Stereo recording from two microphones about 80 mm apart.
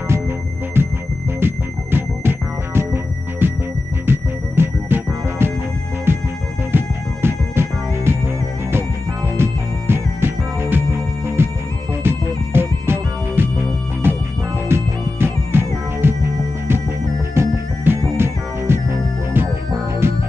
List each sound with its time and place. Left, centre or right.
0.8 s music: right
9.4 s music: right